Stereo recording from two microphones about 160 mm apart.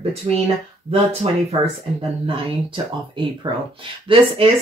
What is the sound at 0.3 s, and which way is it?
Speech, 40° right (ahead or behind).